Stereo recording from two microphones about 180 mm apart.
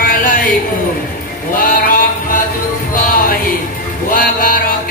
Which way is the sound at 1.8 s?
50° left (ahead or behind).